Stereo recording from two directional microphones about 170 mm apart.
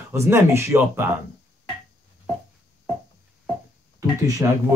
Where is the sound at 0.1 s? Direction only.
15° right (ahead or behind).